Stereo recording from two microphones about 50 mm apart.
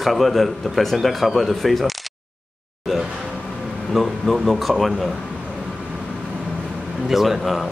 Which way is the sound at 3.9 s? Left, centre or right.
Centre.